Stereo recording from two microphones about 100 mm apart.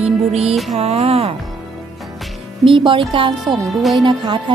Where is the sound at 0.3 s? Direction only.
90° right.